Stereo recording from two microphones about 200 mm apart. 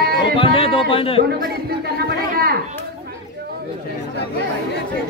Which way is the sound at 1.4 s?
50° right (ahead or behind).